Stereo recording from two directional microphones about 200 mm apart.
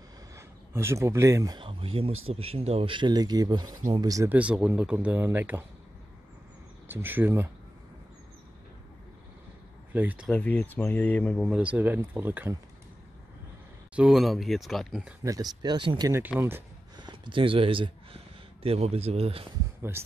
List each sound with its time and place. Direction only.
0.4 s speech: 15° right (ahead or behind)
6.9 s speech: 10° right (ahead or behind)
9.9 s speech: 5° right (ahead or behind)
10.3 s speech: 5° left (ahead or behind)
11.4 s speech: 5° right (ahead or behind)
13.9 s speech: 5° right (ahead or behind)
15.2 s speech: 20° right (ahead or behind)
16.3 s a sound: 10° right (ahead or behind)
17.0 s speech: 25° right (ahead or behind)